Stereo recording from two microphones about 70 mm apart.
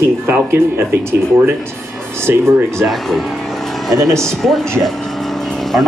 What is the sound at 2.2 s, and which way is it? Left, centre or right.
Speech, right.